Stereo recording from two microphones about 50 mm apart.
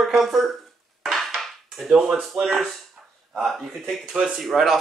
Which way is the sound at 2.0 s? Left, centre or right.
Centre.